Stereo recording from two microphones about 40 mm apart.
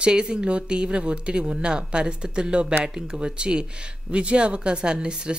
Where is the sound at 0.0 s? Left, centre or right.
Right.